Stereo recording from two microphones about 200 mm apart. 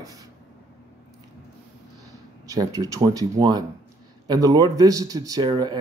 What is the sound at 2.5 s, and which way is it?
Speech, 15° right (ahead or behind).